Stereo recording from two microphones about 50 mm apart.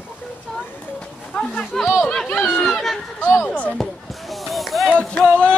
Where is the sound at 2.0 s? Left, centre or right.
Centre.